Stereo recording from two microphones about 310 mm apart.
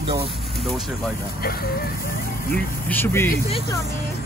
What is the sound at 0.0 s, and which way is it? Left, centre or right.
Speech, centre.